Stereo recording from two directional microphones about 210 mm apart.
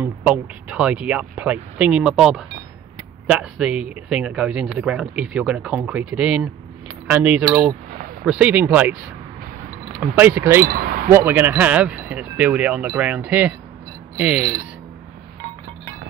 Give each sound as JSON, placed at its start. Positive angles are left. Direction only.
{"t": 0.0, "sound": "speech", "side_deg": -5}
{"t": 9.9, "sound": "speech", "side_deg": -10}
{"t": 10.6, "sound": "speech", "side_deg": -40}
{"t": 11.1, "sound": "speech", "side_deg": -10}